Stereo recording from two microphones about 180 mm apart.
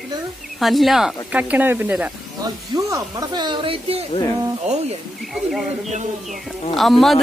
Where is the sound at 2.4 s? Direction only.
20° right (ahead or behind).